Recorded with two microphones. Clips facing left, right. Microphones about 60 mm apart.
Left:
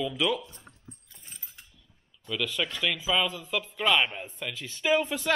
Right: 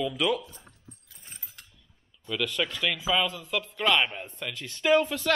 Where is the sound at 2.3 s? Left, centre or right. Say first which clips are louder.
Right 1 dB; centre.